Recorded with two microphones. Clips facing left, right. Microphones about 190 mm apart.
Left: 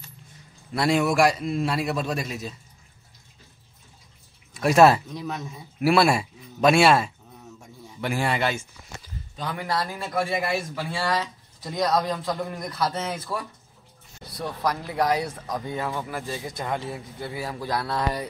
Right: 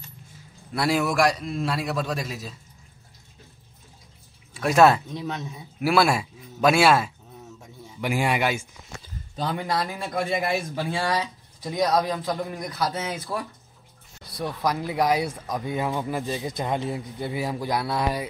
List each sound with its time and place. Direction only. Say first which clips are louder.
0.7 s a man's voice: left 2 dB; centre (ahead or behind)
4.6 s a man's voice: left 1 dB; centre (ahead or behind)
8.0 s speech: right 1 dB; 15° right (ahead or behind)
9.4 s a man's voice: right 4 dB; 25° right (ahead or behind)
9.8 s speech: even; 15° right (ahead or behind)
14.4 s speech: right 1 dB; 10° right (ahead or behind)